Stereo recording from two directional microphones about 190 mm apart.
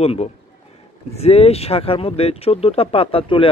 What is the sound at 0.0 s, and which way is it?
Speech, 30° left (ahead or behind).